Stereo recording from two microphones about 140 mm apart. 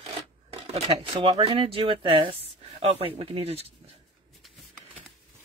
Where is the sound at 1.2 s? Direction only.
45° right (ahead or behind).